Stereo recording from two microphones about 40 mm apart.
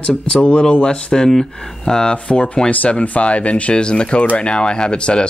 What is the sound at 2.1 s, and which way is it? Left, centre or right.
Speech, left.